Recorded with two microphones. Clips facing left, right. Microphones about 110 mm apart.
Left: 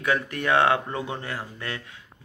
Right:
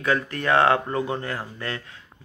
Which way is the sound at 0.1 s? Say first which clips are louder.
Right 2 dB; 15° left (ahead or behind).